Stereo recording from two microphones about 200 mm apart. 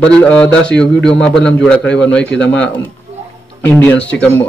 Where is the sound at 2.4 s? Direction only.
65° left (ahead or behind).